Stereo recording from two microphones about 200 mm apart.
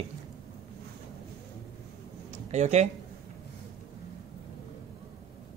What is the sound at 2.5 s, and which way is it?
Speech, 35° right (ahead or behind).